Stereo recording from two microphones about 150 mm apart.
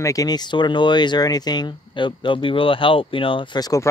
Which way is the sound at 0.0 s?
25° left (ahead or behind).